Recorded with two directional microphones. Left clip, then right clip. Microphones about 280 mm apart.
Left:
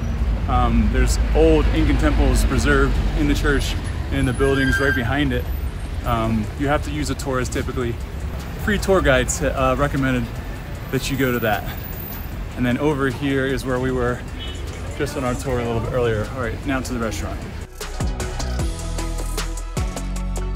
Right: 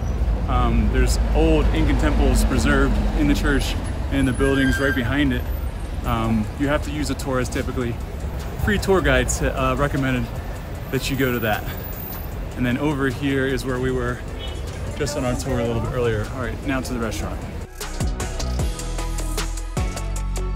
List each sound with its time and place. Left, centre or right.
0.5 s speech: centre
12.6 s speech: centre
13.7 s speech: centre
16.0 s speech: centre
17.9 s music: centre